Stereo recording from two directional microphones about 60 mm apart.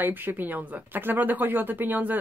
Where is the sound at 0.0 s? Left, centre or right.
Right.